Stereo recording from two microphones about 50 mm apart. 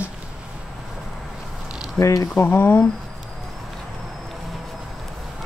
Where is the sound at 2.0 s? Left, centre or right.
Left.